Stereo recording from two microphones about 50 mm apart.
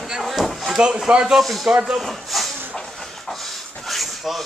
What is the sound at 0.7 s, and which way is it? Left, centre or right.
Speech, centre.